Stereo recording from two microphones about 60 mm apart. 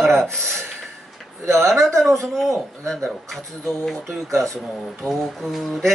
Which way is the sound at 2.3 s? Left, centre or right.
Centre.